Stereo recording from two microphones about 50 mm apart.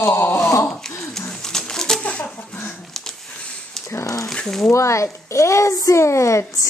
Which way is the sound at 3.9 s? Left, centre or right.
Left.